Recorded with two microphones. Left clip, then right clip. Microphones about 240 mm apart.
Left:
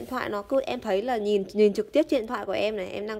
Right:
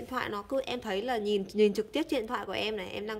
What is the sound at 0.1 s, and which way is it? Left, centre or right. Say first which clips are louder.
A woman's voice: left 6 dB; centre.